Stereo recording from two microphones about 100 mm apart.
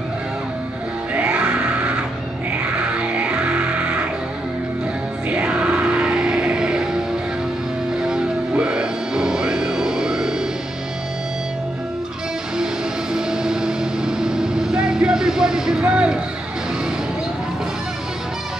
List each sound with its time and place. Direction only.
1.1 s music: 15° right (ahead or behind)
5.3 s music: 10° right (ahead or behind)
8.0 s music: 5° right (ahead or behind)
13.1 s vehicle: 5° right (ahead or behind)